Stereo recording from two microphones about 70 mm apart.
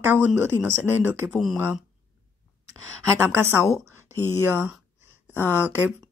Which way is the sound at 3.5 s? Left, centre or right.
Left.